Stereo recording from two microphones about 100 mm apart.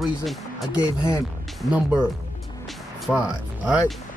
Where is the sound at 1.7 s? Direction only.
10° right (ahead or behind).